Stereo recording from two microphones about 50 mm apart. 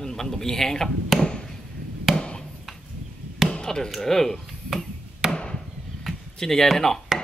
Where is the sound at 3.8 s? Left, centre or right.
Centre.